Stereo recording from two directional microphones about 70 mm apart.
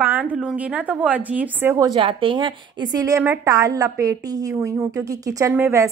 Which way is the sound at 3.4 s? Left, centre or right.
Right.